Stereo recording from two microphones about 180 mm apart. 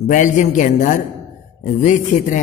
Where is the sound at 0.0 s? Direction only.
40° left (ahead or behind).